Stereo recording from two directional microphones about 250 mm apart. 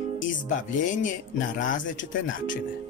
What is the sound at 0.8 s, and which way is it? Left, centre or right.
Music, left.